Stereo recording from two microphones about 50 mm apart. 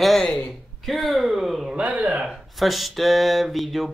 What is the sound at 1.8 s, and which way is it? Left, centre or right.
Speech, right.